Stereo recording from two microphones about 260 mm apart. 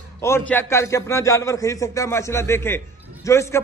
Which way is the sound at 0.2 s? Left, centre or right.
Centre.